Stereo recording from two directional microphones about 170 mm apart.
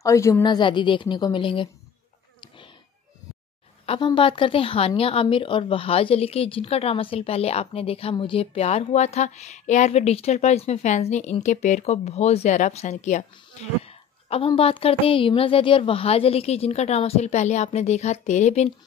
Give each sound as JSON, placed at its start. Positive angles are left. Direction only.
{"t": 0.0, "sound": "a woman's voice", "side_deg": 20}
{"t": 3.8, "sound": "a woman's voice", "side_deg": 30}